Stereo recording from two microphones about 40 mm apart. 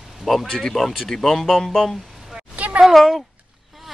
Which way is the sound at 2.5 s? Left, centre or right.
Right.